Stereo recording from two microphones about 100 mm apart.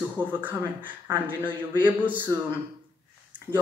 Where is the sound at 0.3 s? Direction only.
20° right (ahead or behind).